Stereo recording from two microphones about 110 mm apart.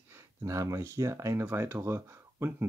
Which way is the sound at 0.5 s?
30° right (ahead or behind).